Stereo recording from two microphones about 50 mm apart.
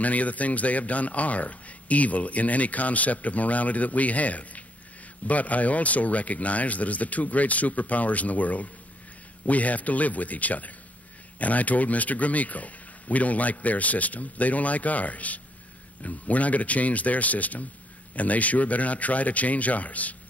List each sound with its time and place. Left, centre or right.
0.0 s speech: left